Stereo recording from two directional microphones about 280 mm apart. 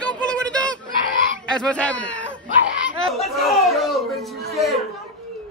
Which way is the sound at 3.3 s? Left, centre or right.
Centre.